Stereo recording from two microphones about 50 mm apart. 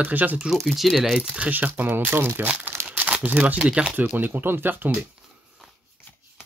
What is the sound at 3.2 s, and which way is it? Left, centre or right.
Speech, right.